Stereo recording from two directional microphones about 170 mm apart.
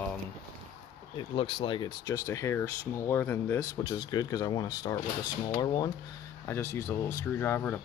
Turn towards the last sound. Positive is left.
turn(degrees=10)  # may be behind; listen again after turning